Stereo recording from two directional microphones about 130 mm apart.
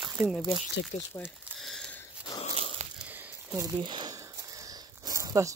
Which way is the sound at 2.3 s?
25° left (ahead or behind).